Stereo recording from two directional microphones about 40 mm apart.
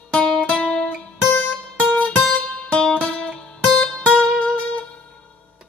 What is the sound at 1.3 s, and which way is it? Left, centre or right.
Music, left.